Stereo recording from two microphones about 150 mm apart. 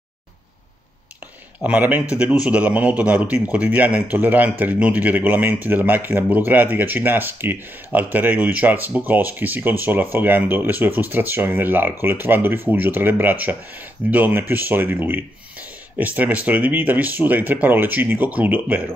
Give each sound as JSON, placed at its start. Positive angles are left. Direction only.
{"t": 1.6, "sound": "a man's voice", "side_deg": -10}